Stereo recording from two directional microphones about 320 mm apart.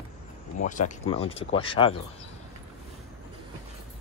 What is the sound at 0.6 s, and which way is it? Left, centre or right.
Speech, left.